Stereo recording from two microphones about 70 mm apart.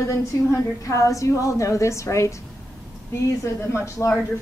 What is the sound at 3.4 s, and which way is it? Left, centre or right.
Speech, left.